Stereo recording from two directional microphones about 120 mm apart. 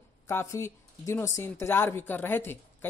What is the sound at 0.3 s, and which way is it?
Speech, 25° left (ahead or behind).